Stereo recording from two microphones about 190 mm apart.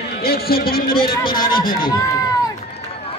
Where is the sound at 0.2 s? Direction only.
55° left (ahead or behind).